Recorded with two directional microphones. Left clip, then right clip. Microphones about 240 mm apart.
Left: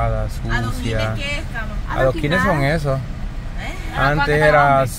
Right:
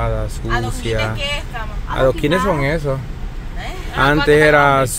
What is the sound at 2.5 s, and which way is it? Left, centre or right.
Speech, centre.